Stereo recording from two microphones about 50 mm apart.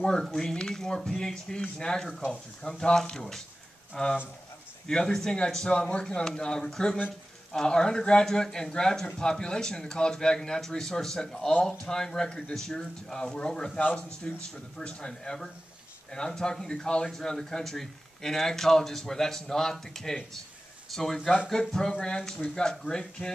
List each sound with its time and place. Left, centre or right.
0.2 s speech: centre
13.7 s speech: left